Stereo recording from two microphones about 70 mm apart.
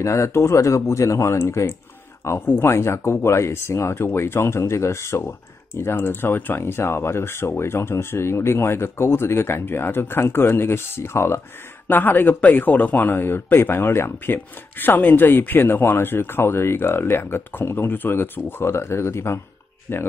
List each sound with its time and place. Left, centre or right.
0.0 s speech: left